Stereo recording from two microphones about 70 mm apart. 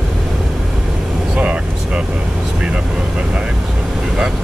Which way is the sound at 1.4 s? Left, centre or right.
Centre.